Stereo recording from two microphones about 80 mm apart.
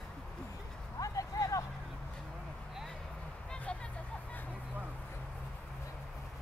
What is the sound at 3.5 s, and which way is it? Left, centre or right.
Vehicle, centre.